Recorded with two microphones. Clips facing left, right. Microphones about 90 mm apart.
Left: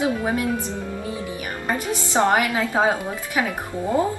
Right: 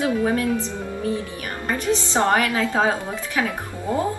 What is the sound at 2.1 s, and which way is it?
Speech, 20° left (ahead or behind).